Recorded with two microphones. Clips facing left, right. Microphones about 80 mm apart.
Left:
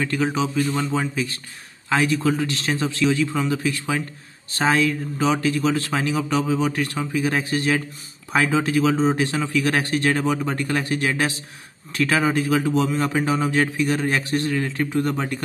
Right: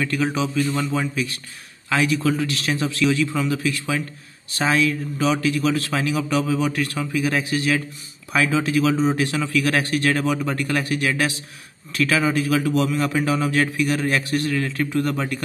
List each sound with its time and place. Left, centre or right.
0.0 s a man's voice: left